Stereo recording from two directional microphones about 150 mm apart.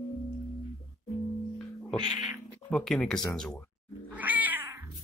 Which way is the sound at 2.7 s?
5° left (ahead or behind).